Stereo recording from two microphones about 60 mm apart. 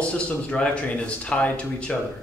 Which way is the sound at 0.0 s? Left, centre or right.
Centre.